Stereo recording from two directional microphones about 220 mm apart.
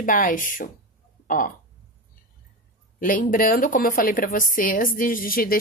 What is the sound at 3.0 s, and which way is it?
Speech, 40° left (ahead or behind).